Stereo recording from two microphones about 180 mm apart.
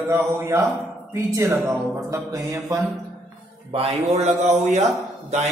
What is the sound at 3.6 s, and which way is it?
A man's voice, 35° right (ahead or behind).